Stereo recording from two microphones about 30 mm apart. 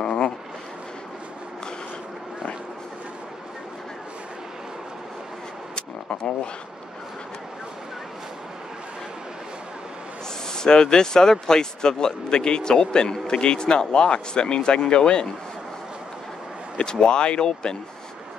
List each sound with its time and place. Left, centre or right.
0.0 s vehicle: left
5.8 s a sound: left
10.5 s speech: left
16.7 s speech: left